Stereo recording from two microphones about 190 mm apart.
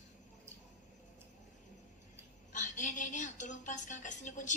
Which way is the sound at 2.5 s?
40° left (ahead or behind).